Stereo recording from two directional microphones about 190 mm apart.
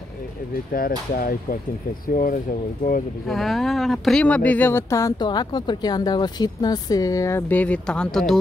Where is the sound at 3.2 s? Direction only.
Centre (ahead or behind).